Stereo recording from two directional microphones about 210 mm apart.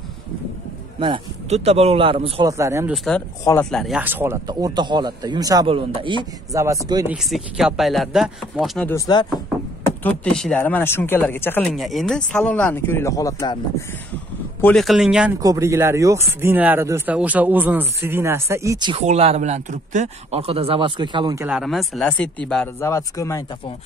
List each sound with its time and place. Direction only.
0.9 s speech: 25° right (ahead or behind)
2.5 s speech: 15° right (ahead or behind)
3.4 s speech: 10° left (ahead or behind)
3.8 s speech: 5° right (ahead or behind)
7.2 s speech: centre (ahead or behind)
8.9 s speech: 20° left (ahead or behind)
10.0 s speech: 5° left (ahead or behind)
14.6 s speech: 5° left (ahead or behind)
15.4 s speech: 15° right (ahead or behind)
21.5 s speech: centre (ahead or behind); by 23.4 s 15° left (ahead or behind)